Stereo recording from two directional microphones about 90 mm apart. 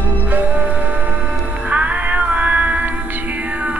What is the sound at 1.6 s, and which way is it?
Music, 15° right (ahead or behind).